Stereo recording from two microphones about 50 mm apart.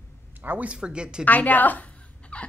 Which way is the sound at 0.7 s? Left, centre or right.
Centre.